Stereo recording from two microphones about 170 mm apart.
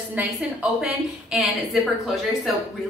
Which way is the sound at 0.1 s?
10° right (ahead or behind).